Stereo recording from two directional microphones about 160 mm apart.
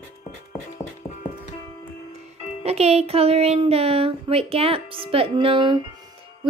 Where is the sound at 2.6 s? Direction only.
40° right (ahead or behind).